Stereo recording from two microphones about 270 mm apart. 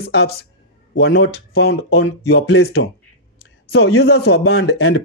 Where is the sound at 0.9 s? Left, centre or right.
Left.